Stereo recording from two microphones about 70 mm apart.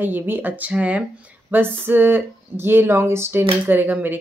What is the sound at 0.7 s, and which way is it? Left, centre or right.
Speech, centre.